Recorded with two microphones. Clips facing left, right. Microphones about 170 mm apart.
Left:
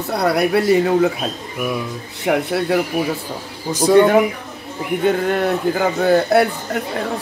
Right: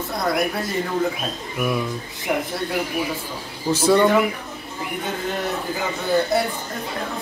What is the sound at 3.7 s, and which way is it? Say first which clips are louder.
Speech: left 5 dB; 15° left (ahead or behind).